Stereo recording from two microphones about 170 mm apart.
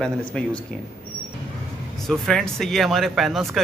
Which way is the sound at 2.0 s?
Centre (ahead or behind).